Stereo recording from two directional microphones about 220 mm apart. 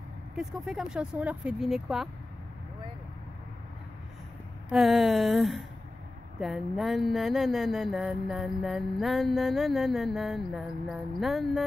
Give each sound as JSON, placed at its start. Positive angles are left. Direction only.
{"t": 0.4, "sound": "speech", "side_deg": 0}
{"t": 4.6, "sound": "speech", "side_deg": 0}